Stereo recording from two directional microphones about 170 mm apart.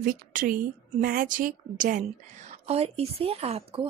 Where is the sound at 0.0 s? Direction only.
50° right (ahead or behind).